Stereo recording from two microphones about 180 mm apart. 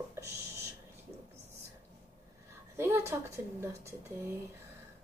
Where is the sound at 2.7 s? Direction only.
15° right (ahead or behind).